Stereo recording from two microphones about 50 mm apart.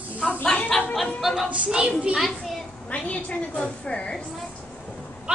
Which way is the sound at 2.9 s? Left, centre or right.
Left.